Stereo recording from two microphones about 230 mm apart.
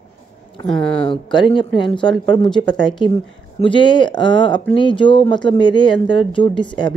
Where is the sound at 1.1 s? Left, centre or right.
Left.